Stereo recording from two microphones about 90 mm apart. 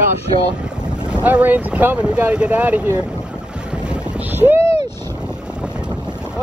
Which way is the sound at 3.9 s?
20° right (ahead or behind).